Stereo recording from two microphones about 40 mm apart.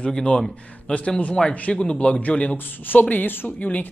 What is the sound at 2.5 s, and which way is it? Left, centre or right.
Speech, left.